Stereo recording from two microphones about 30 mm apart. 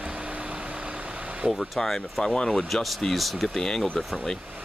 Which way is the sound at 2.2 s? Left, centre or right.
Left.